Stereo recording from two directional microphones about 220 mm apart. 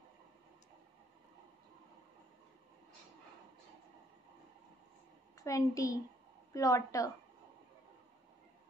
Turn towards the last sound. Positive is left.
turn(degrees=15)  # may be behind; listen again after turning